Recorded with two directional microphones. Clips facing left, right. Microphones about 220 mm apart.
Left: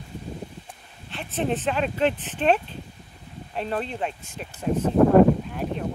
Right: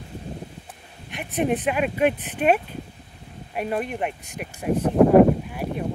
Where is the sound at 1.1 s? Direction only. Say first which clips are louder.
Right 3 dB; 15° right (ahead or behind).